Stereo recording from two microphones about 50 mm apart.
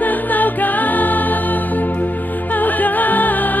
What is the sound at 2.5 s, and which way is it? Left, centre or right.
Music, left.